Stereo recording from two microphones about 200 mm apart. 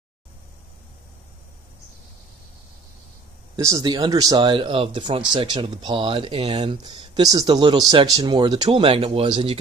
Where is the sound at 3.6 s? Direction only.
15° right (ahead or behind).